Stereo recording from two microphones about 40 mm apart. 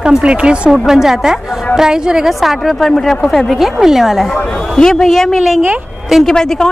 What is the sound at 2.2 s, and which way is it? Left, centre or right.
A woman's voice, centre.